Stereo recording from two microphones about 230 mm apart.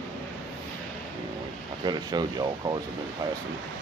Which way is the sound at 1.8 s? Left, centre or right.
Centre.